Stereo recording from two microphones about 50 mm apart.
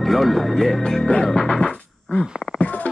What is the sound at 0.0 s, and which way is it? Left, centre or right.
Speech, centre.